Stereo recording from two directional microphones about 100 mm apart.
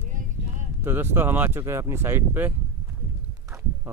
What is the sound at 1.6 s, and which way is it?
Speech, 25° right (ahead or behind).